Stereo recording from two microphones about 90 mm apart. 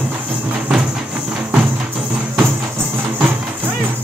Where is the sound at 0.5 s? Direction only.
10° right (ahead or behind).